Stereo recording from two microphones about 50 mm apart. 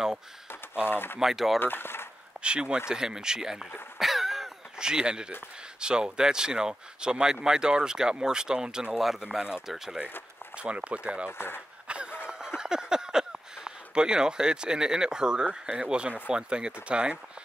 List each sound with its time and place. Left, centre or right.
0.8 s speech: left
1.2 s speech: centre
1.6 s speech: left
2.4 s speech: centre
4.0 s throat clearing: centre
5.8 s speech: centre
8.9 s speech: centre
9.2 s speech: centre
11.2 s speech: left
11.9 s a sound: right
12.3 s speech: centre